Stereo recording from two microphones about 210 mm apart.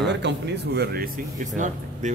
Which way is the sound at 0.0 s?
55° right (ahead or behind).